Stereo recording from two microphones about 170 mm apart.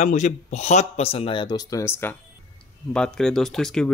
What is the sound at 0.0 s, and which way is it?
Speech, 45° left (ahead or behind).